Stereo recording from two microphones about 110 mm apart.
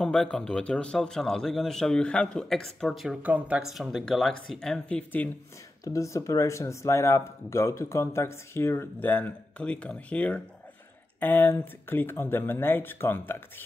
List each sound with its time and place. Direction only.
0.0 s speech: 5° left (ahead or behind)
3.2 s speech: 15° right (ahead or behind)
3.7 s speech: centre (ahead or behind)
5.9 s speech: 30° left (ahead or behind)